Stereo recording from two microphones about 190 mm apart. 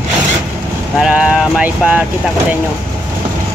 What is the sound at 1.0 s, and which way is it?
Speech, 5° right (ahead or behind).